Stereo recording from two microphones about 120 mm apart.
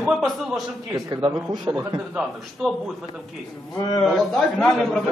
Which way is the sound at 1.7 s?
25° right (ahead or behind).